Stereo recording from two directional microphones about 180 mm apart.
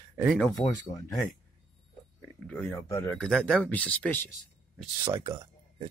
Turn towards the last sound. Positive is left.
turn(degrees=-25)  # may be behind; listen again after turning